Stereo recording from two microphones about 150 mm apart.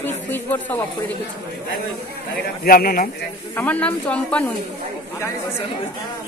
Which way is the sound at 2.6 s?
75° left (ahead or behind).